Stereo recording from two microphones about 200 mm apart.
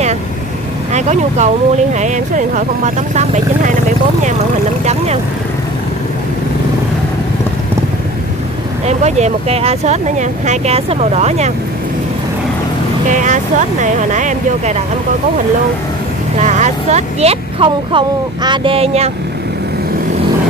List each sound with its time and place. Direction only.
0.9 s speech: 35° right (ahead or behind)
4.8 s speech: 35° right (ahead or behind)
8.8 s speech: 35° right (ahead or behind)
13.1 s speech: 40° right (ahead or behind)
16.3 s speech: 35° right (ahead or behind)